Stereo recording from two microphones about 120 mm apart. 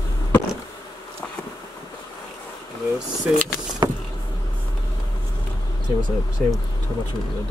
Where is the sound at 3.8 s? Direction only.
35° right (ahead or behind).